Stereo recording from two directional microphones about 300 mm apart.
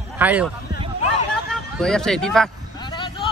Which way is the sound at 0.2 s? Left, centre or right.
Centre.